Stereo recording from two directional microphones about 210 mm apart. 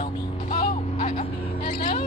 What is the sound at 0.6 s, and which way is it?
Vehicle, 30° left (ahead or behind).